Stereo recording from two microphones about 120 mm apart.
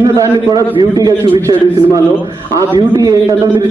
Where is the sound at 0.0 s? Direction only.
30° right (ahead or behind).